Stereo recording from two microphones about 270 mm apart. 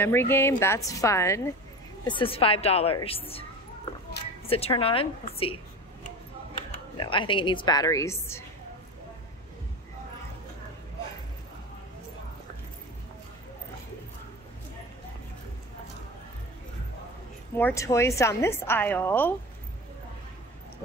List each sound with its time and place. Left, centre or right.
0.0 s a woman's voice: centre
4.5 s a woman's voice: left
7.0 s a woman's voice: centre
17.6 s a woman's voice: centre